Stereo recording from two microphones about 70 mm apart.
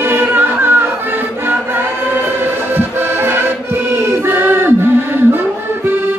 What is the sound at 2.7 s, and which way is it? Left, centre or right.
Music, right.